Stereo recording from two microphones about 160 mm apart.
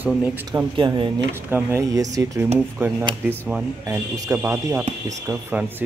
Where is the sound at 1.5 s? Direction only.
15° right (ahead or behind).